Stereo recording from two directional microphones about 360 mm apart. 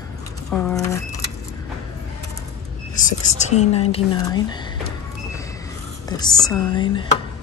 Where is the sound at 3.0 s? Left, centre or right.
Centre.